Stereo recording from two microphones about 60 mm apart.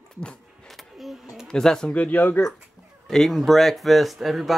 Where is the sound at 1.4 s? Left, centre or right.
Centre.